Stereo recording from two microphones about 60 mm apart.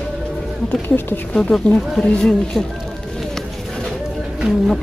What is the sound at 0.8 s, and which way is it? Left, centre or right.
Speech, left.